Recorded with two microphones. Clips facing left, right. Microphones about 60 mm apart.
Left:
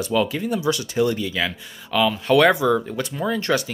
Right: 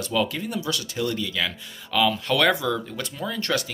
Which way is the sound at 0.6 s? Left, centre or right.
Left.